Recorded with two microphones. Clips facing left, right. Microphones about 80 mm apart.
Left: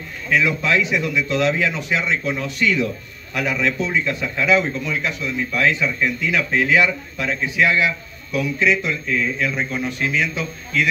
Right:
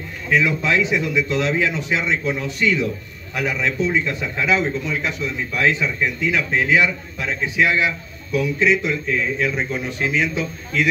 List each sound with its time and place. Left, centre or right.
0.3 s a man's voice: right